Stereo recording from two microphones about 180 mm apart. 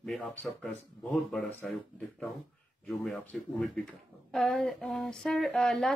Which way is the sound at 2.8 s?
5° left (ahead or behind).